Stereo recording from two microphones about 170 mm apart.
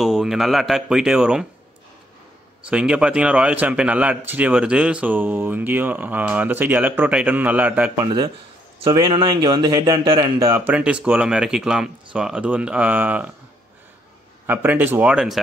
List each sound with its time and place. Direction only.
0.0 s speech: centre (ahead or behind)
2.7 s a man's voice: 5° right (ahead or behind)
8.0 s speech: 25° right (ahead or behind)
10.6 s a man's voice: 10° right (ahead or behind)
14.4 s a man's voice: 10° right (ahead or behind)